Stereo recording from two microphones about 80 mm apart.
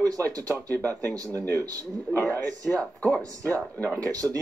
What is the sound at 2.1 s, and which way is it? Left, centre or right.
Speech, left.